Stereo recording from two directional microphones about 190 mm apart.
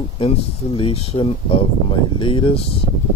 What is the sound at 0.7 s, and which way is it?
Speech, 30° left (ahead or behind).